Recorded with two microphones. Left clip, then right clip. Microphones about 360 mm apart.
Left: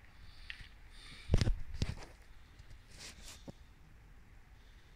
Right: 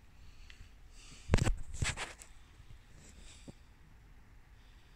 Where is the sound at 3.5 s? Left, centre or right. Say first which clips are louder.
Right 1 dB; left.